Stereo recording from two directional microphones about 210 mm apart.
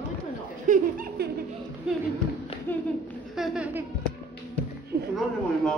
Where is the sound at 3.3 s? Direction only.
Centre (ahead or behind).